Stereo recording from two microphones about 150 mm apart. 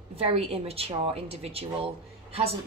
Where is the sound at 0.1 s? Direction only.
40° right (ahead or behind).